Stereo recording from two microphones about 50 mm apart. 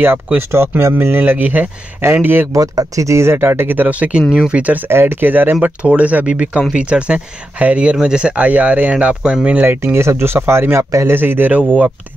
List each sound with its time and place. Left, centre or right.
0.0 s speech: right
0.9 s speech: right
2.0 s speech: right
3.0 s speech: right
3.4 s speech: right
4.5 s speech: right
4.8 s speech: right; by 8.4 s centre
8.4 s speech: right
9.7 s speech: right
11.1 s speech: right